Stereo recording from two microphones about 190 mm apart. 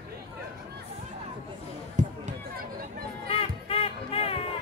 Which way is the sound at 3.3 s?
30° left (ahead or behind).